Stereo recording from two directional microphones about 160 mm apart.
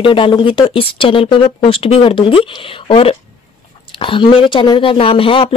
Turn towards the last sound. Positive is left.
turn(degrees=35)  # may be behind; listen again after turning